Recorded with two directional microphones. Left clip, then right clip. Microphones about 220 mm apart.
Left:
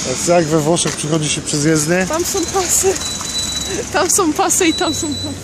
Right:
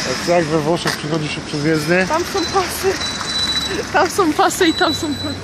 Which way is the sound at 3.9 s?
55° left (ahead or behind).